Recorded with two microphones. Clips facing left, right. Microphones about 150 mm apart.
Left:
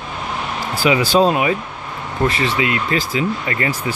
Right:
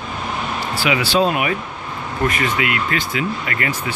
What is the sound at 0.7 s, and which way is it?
Speech, 45° left (ahead or behind).